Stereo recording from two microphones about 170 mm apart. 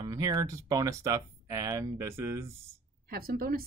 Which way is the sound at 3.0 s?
60° right (ahead or behind).